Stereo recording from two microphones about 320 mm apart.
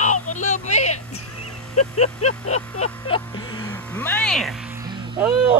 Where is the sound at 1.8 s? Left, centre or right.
Left.